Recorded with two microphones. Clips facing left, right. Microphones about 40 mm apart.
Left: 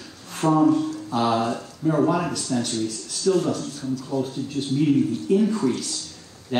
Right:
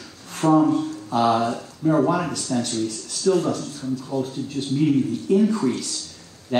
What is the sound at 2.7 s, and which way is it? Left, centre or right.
Speech, right.